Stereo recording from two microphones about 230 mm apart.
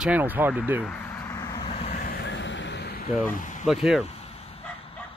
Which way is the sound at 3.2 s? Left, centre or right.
Left.